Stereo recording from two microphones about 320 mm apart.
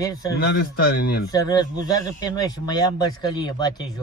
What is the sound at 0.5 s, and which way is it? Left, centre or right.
Speech, left.